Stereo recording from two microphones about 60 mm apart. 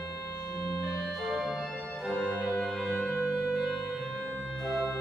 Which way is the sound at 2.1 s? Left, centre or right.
Left.